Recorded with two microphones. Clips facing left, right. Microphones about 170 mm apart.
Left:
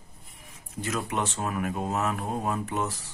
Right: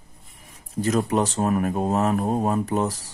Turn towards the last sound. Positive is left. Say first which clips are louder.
# right 7 dB
turn(degrees=-35)  # may be behind; listen again after turning